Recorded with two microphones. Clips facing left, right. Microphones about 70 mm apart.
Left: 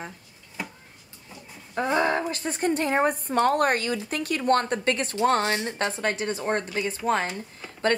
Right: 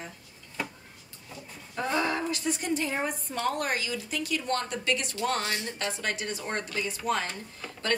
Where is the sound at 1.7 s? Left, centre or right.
Left.